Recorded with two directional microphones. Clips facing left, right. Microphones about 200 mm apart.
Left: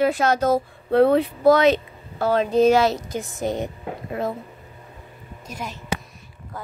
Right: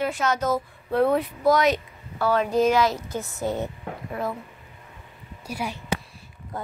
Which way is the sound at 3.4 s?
15° left (ahead or behind).